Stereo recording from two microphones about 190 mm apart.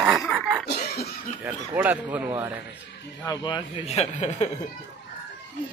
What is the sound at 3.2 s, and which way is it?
Speech, 20° left (ahead or behind).